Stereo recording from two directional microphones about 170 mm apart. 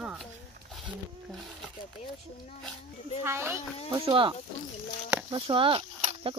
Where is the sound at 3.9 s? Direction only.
30° right (ahead or behind).